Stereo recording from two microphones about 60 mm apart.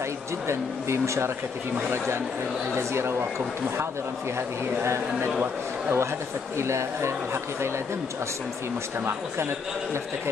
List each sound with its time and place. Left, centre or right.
0.5 s speech: right
4.8 s speech: right
5.4 s a man's voice: right
6.6 s speech: right